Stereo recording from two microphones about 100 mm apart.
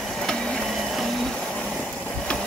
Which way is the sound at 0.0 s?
5° left (ahead or behind).